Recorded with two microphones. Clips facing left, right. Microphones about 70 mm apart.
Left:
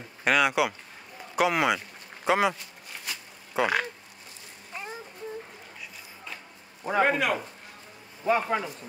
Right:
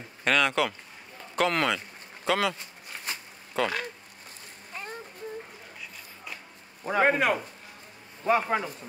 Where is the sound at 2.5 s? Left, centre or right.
Right.